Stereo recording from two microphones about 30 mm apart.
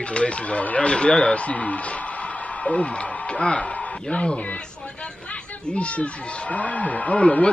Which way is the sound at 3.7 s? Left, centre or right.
Left.